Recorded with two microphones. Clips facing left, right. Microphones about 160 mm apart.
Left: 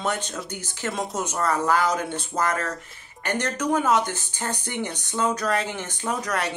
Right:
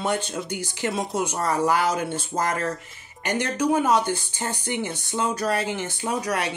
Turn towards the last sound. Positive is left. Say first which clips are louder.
# right 1 dB
turn(degrees=-10)  # may be behind; listen again after turning